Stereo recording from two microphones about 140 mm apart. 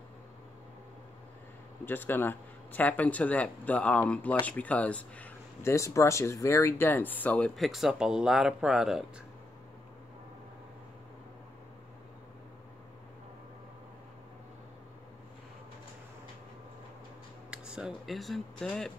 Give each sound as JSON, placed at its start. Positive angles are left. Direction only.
{"t": 1.9, "sound": "speech", "side_deg": 15}
{"t": 17.5, "sound": "speech", "side_deg": -5}